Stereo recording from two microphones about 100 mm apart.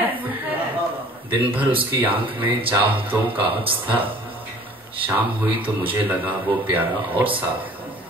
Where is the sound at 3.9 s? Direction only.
15° right (ahead or behind).